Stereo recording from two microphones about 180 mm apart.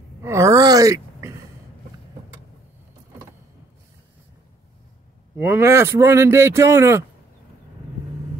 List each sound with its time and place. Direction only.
0.2 s groan: 15° right (ahead or behind)
5.4 s speech: 10° right (ahead or behind)